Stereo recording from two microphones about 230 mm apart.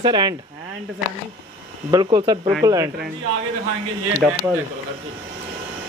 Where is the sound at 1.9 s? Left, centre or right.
Centre.